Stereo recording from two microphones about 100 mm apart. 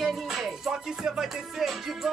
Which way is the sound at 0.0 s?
Centre (ahead or behind).